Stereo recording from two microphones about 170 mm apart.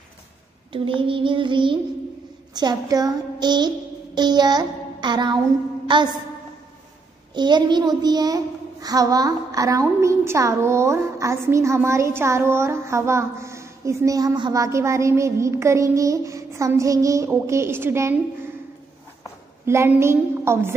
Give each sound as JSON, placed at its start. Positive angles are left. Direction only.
{"t": 0.7, "sound": "child singing", "side_deg": -30}
{"t": 2.5, "sound": "music", "side_deg": -25}
{"t": 5.9, "sound": "a woman's voice", "side_deg": -30}
{"t": 7.3, "sound": "child singing", "side_deg": -25}
{"t": 8.8, "sound": "a woman's voice", "side_deg": -20}
{"t": 19.6, "sound": "a woman's voice", "side_deg": -15}